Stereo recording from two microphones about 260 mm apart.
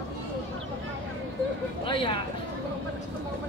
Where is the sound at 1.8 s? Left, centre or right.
Centre.